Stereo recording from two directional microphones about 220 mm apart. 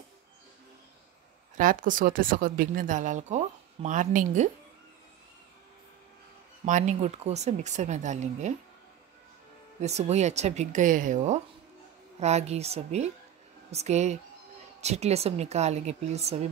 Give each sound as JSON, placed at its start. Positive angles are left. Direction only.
{"t": 1.6, "sound": "a woman's voice", "side_deg": -35}
{"t": 6.6, "sound": "a woman's voice", "side_deg": -35}
{"t": 9.8, "sound": "a woman's voice", "side_deg": -30}